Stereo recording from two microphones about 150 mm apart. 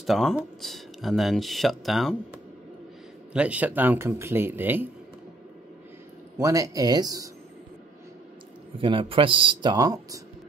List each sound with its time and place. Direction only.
0.0 s speech: centre (ahead or behind)
3.3 s speech: 10° right (ahead or behind)
6.3 s speech: 20° right (ahead or behind)
8.7 s speech: 35° right (ahead or behind)